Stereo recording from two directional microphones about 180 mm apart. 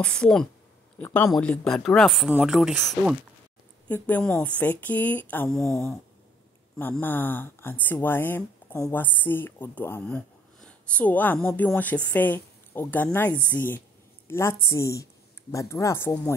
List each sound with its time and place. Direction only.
0.0 s speech: 5° left (ahead or behind)
3.9 s speech: 10° left (ahead or behind)
6.8 s speech: 10° left (ahead or behind)